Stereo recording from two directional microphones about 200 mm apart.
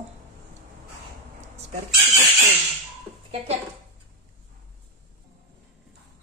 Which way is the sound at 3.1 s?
20° right (ahead or behind).